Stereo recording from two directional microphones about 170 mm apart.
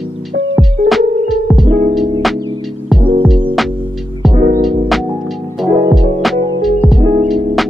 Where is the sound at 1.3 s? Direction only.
Centre (ahead or behind).